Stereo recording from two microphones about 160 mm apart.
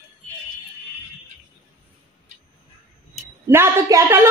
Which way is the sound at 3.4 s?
15° right (ahead or behind).